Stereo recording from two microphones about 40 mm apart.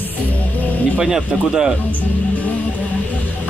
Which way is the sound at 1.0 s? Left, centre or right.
Centre.